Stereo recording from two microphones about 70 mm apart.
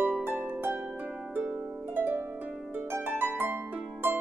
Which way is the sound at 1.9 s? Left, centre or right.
Right.